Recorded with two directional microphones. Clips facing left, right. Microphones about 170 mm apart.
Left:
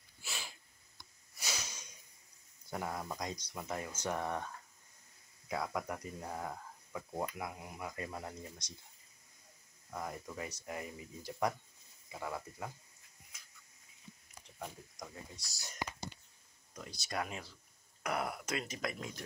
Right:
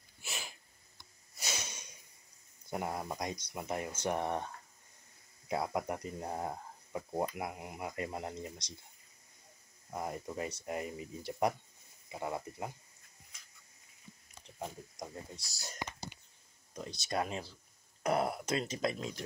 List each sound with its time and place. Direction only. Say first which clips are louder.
1.3 s a sound: right 2 dB; 20° right (ahead or behind)
2.7 s speech: right 3 dB; 20° right (ahead or behind)
5.5 s speech: right 3 dB; 25° right (ahead or behind)
9.8 s speech: right 3 dB; 25° right (ahead or behind)
14.6 s speech: right 4 dB; 30° right (ahead or behind)